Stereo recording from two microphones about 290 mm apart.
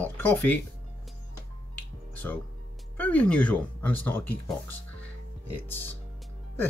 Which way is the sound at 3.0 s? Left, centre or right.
Centre.